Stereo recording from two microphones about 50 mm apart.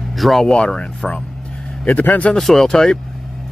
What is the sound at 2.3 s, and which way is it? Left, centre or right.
Speech, centre.